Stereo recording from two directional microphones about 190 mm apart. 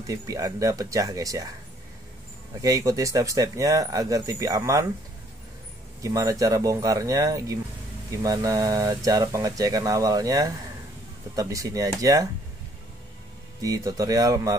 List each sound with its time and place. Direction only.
0.0 s speech: 20° right (ahead or behind)
2.6 s speech: 20° right (ahead or behind)
6.0 s speech: 15° right (ahead or behind)
13.6 s speech: 20° right (ahead or behind)